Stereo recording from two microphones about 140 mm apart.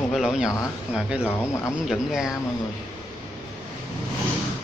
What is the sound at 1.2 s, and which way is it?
Speech, 20° left (ahead or behind).